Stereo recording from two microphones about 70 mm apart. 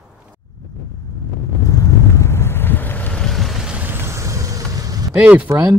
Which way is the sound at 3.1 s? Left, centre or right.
Centre.